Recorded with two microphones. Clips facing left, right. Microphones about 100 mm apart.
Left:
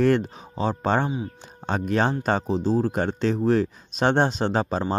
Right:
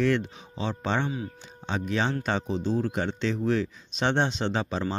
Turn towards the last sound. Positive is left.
turn(degrees=45)  # may be behind; listen again after turning